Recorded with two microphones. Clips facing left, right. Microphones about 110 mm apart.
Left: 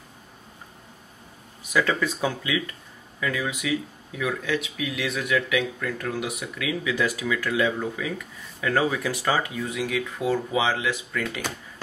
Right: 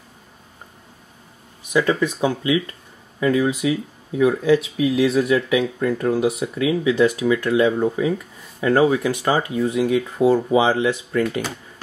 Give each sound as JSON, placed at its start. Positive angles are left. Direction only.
{"t": 1.6, "sound": "speech", "side_deg": -25}